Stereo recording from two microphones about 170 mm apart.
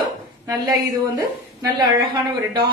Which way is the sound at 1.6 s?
25° right (ahead or behind).